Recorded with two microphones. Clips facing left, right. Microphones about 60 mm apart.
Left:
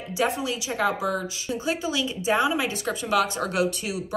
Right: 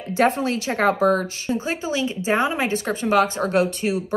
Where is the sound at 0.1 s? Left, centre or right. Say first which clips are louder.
Right 6 dB; right.